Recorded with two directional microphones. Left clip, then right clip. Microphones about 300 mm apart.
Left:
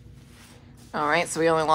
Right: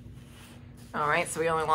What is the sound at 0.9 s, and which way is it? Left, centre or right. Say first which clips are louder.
Speech: left 4 dB; left.